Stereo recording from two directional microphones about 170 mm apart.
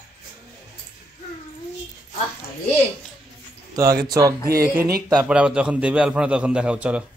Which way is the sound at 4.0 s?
20° right (ahead or behind).